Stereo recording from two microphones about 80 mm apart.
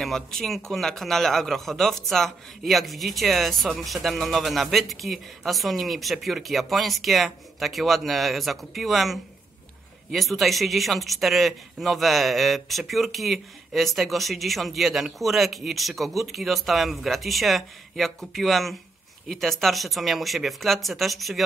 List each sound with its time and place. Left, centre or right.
0.0 s speech: centre